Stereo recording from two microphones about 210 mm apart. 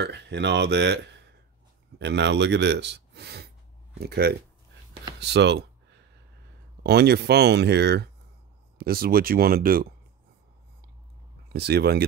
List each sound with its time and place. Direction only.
0.0 s a man's voice: 55° right (ahead or behind)
11.4 s speech: 50° right (ahead or behind)